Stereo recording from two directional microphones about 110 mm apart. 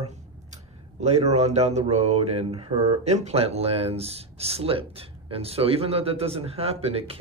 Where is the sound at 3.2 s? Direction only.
70° right (ahead or behind).